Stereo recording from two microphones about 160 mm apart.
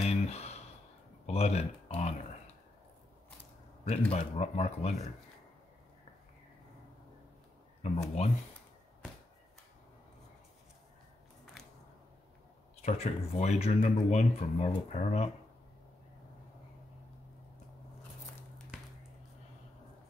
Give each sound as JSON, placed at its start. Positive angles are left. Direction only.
{"t": 0.0, "sound": "a sound", "side_deg": 40}
{"t": 1.2, "sound": "speech", "side_deg": 40}
{"t": 3.8, "sound": "speech", "side_deg": 45}
{"t": 7.8, "sound": "speech", "side_deg": 45}
{"t": 12.8, "sound": "speech", "side_deg": 40}
{"t": 18.7, "sound": "a sound", "side_deg": -5}